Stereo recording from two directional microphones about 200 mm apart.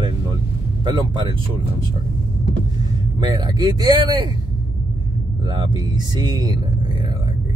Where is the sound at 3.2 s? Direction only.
20° right (ahead or behind).